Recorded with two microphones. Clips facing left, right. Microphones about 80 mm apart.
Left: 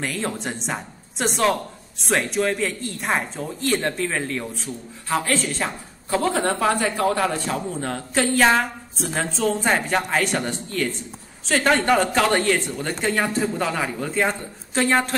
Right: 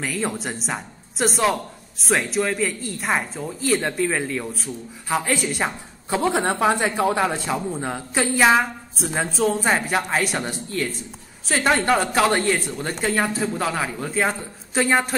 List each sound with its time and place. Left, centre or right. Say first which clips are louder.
0.0 s a woman's voice: right 1 dB; centre